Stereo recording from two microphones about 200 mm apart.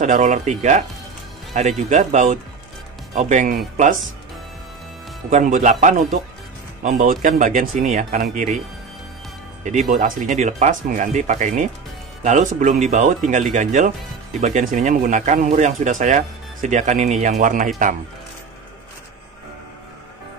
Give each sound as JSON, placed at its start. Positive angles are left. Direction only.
{"t": 0.0, "sound": "speech", "side_deg": -40}
{"t": 5.3, "sound": "speech", "side_deg": -40}
{"t": 9.8, "sound": "speech", "side_deg": -45}